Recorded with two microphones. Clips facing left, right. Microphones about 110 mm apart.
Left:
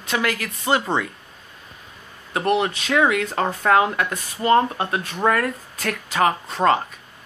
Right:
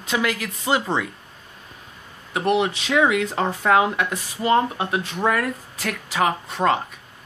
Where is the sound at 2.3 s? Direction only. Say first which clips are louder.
Even; 15° right (ahead or behind).